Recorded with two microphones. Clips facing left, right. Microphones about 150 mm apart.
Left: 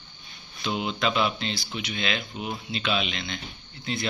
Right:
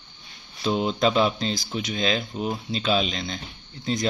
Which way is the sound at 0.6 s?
40° right (ahead or behind).